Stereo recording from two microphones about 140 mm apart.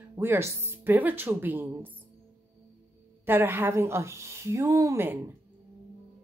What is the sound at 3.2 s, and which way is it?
A woman's voice, 15° right (ahead or behind).